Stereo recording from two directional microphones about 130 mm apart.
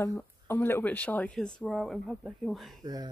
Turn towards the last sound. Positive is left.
turn(degrees=-30)  # may be behind; listen again after turning